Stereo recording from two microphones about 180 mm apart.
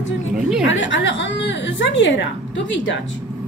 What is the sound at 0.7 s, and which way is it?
Speech, 90° left.